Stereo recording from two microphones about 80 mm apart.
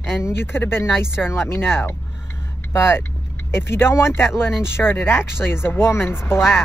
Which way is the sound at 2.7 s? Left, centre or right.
Left.